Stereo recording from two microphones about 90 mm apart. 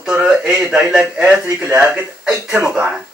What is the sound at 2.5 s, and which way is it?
Speech, 10° right (ahead or behind).